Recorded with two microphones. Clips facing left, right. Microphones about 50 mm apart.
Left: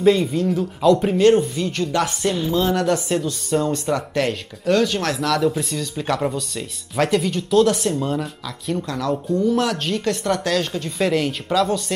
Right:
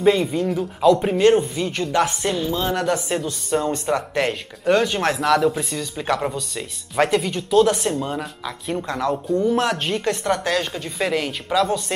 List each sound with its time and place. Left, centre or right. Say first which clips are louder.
0.0 s speech: left 1 dB; centre
3.6 s speech: even; right
8.5 s speech: right 3 dB; centre